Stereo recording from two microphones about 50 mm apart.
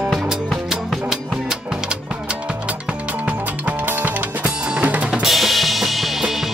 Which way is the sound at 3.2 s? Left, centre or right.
Right.